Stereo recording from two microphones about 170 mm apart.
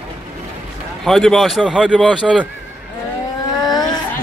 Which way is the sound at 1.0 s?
Centre (ahead or behind).